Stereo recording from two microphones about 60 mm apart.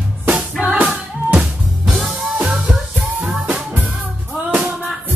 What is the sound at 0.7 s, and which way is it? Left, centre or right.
Music, right.